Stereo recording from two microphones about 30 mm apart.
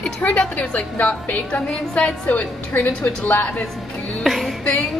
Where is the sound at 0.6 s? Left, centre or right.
Left.